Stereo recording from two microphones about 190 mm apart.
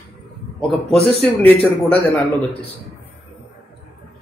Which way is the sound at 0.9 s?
30° left (ahead or behind).